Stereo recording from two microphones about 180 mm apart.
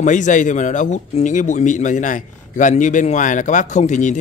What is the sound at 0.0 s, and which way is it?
Speech, 45° left (ahead or behind).